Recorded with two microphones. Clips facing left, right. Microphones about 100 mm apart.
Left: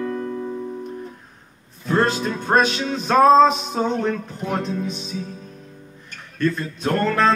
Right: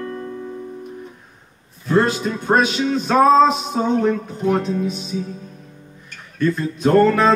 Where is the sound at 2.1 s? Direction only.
5° right (ahead or behind).